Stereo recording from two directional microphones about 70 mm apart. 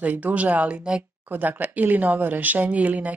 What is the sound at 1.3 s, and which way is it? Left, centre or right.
Speech, right.